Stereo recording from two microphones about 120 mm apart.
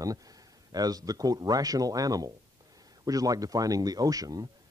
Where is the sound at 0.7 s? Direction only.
30° right (ahead or behind).